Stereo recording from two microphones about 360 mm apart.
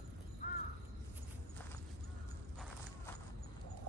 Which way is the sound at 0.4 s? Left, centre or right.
Left.